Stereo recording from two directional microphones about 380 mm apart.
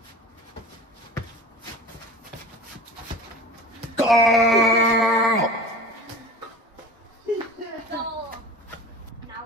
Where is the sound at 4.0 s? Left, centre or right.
Centre.